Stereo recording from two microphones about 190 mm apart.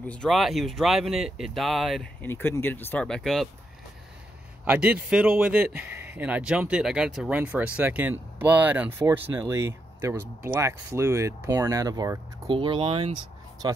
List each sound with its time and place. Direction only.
0.0 s speech: 5° left (ahead or behind)
2.2 s speech: 10° left (ahead or behind)
4.6 s speech: 10° right (ahead or behind)